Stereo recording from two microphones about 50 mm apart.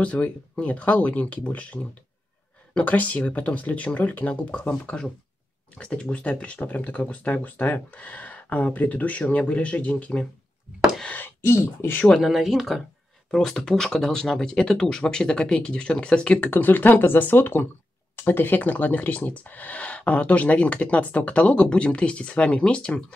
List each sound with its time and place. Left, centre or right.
0.0 s speech: left
11.1 s a sound: left
12.2 s speech: centre
13.3 s speech: centre
16.4 s speech: left